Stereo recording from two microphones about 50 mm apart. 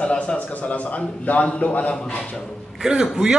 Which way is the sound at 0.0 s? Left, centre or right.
Left.